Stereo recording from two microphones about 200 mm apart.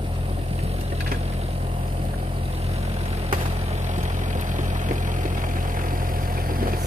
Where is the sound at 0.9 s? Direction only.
45° right (ahead or behind).